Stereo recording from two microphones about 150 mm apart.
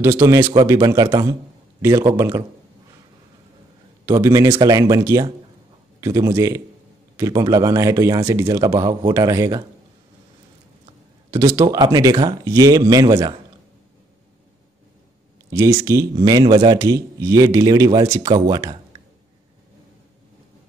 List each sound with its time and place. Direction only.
0.0 s a man's voice: 15° right (ahead or behind)
4.0 s speech: 20° right (ahead or behind)
11.2 s speech: 20° right (ahead or behind)
15.5 s a man's voice: 15° right (ahead or behind)
18.3 s speech: 30° right (ahead or behind)